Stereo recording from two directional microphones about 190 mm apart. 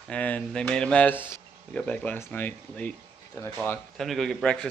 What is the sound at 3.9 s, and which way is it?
Speech, centre (ahead or behind).